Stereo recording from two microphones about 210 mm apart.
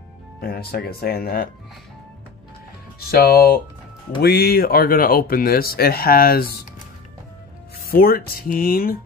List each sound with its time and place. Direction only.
0.4 s speech: 45° left (ahead or behind)
3.1 s speech: 45° left (ahead or behind)
7.8 s speech: 45° left (ahead or behind)